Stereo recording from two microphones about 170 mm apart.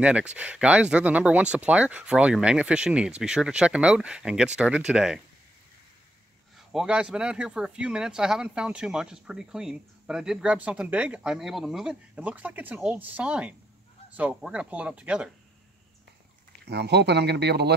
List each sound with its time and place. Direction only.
0.0 s speech: 5° right (ahead or behind)
6.5 s speech: 5° right (ahead or behind)
16.6 s speech: 80° right